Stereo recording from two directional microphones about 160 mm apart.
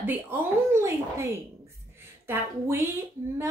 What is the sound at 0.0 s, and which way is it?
A woman's voice, 15° right (ahead or behind).